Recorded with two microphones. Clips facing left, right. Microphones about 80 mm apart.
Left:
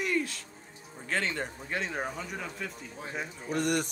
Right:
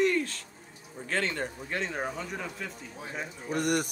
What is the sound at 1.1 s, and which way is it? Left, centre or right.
Speech, centre.